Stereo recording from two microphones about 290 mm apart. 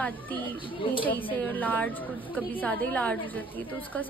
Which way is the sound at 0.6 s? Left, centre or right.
Centre.